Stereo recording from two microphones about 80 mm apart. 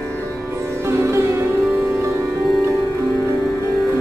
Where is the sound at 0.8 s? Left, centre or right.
Right.